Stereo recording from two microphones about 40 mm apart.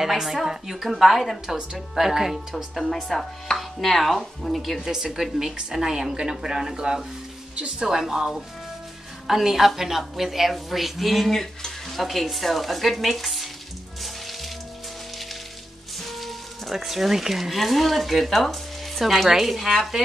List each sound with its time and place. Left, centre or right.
0.0 s a woman's voice: centre
2.9 s a woman's voice: centre
4.8 s a woman's voice: centre
14.0 s music: centre
16.0 s speech: centre